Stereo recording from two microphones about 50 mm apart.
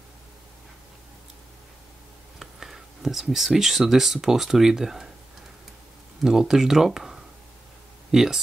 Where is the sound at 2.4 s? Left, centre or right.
Centre.